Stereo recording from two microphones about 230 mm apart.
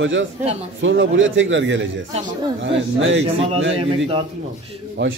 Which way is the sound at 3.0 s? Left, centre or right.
Right.